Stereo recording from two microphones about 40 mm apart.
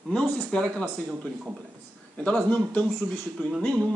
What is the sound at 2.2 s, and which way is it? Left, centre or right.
Speech, left.